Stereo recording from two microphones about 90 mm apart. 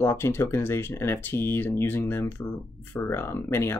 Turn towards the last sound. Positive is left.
turn(degrees=25)  # may be behind; listen again after turning